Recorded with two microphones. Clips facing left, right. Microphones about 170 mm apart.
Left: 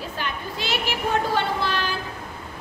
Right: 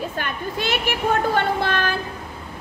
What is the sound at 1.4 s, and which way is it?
Child singing, 55° right (ahead or behind).